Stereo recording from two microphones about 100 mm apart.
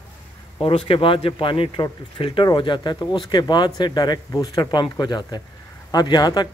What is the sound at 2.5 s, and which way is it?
Speech, 50° left (ahead or behind).